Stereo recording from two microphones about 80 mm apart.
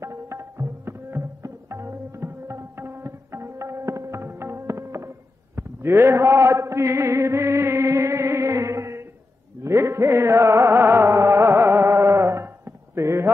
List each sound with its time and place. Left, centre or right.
0.0 s music: right
5.6 s a sound: right
9.6 s music: right